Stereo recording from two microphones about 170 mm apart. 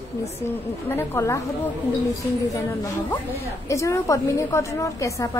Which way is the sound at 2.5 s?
20° left (ahead or behind).